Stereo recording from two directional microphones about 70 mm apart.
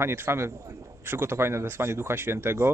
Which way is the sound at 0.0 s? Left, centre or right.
Right.